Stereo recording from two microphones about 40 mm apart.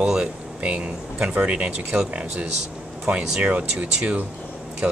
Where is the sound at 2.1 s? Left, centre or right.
Right.